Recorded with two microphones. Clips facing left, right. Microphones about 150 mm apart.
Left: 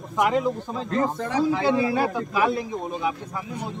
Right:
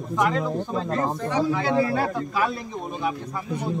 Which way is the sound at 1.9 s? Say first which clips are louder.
Left 1 dB; 10° left (ahead or behind).